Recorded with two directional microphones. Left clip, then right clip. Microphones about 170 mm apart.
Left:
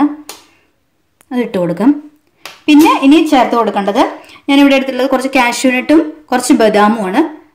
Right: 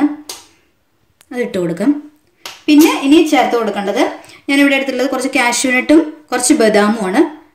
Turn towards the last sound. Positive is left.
turn(degrees=40)  # may be behind; listen again after turning